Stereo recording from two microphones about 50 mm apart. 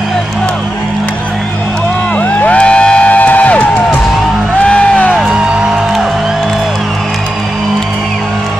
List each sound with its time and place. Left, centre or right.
2.1 s music: left
2.6 s music: left
4.6 s music: left
5.1 s music: centre